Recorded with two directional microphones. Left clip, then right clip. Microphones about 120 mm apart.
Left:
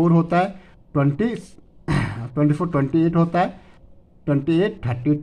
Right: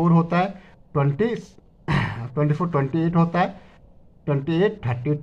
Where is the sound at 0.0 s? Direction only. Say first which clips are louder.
Left 2 dB; 25° left (ahead or behind).